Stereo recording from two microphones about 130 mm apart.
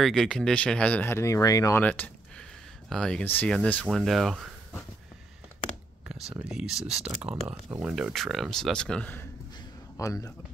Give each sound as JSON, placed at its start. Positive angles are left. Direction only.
{"t": 0.0, "sound": "speech", "side_deg": 5}
{"t": 1.8, "sound": "a sound", "side_deg": 10}
{"t": 2.9, "sound": "speech", "side_deg": 5}
{"t": 6.5, "sound": "speech", "side_deg": -5}
{"t": 9.9, "sound": "speech", "side_deg": 25}